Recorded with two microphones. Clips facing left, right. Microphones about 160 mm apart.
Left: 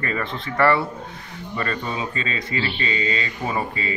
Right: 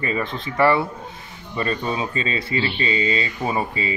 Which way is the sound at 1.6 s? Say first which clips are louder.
Right 3 dB; 20° right (ahead or behind).